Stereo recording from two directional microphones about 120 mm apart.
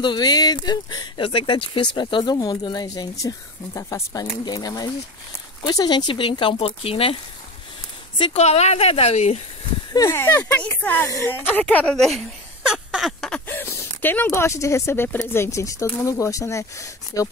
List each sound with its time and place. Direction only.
0.0 s speech: 40° left (ahead or behind); by 7.2 s 55° left (ahead or behind)
8.2 s speech: 60° left (ahead or behind)
9.9 s speech: 20° left (ahead or behind); by 12.2 s 5° left (ahead or behind)
12.6 s a sound: 5° right (ahead or behind)
13.5 s speech: 15° left (ahead or behind)